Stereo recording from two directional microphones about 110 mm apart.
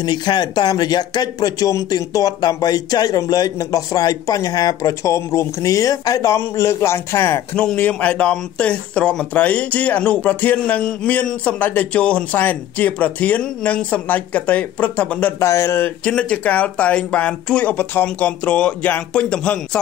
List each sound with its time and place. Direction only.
0.0 s speech: 40° left (ahead or behind); by 7.4 s 20° left (ahead or behind)
7.5 s speech: 10° left (ahead or behind)
15.3 s speech: 25° left (ahead or behind)
16.1 s speech: 10° left (ahead or behind)